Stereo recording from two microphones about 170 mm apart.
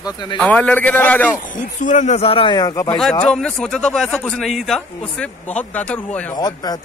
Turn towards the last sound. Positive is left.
turn(degrees=25)  # may be behind; listen again after turning